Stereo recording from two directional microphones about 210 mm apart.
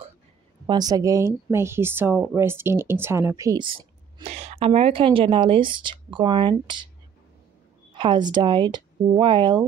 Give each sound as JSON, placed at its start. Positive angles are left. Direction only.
{"t": 0.7, "sound": "speech", "side_deg": -20}
{"t": 7.9, "sound": "speech", "side_deg": -20}